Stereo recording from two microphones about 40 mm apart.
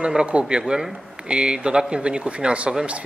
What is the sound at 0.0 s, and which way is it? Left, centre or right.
Speech, right.